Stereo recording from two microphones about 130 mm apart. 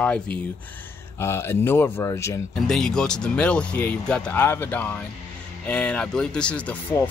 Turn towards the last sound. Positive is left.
turn(degrees=15)  # may be behind; listen again after turning